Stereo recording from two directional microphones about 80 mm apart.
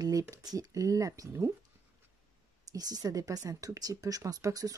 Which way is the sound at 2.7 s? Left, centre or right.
Right.